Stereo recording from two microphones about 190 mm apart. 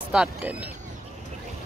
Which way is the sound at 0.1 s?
5° right (ahead or behind).